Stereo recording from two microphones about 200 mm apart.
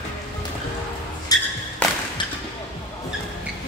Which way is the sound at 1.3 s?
20° left (ahead or behind).